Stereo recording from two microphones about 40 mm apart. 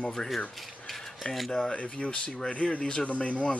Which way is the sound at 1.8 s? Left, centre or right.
Left.